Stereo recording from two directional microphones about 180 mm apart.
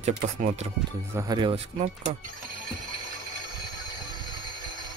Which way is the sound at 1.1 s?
20° right (ahead or behind).